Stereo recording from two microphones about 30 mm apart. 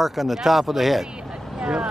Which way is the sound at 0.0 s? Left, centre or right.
Centre.